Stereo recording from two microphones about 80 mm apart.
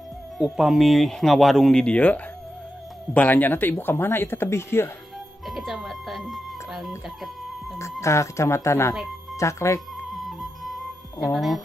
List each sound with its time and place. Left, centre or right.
0.4 s speech: centre; by 4.9 s left
5.5 s music: centre
8.0 s speech: left
10.0 s flute: centre
11.3 s speech: centre